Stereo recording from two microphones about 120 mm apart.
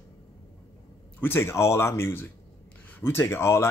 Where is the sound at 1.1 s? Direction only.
20° left (ahead or behind).